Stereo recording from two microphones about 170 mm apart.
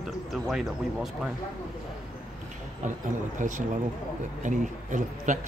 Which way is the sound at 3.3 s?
45° right (ahead or behind).